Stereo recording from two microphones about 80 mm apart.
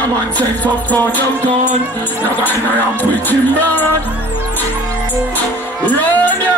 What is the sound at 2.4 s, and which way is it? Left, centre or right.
Speech, left.